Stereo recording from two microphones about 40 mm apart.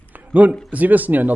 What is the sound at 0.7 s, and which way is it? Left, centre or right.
Speech, right.